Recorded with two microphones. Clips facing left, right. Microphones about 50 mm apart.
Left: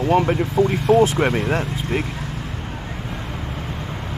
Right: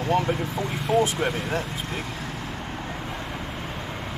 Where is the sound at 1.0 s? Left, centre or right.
Left.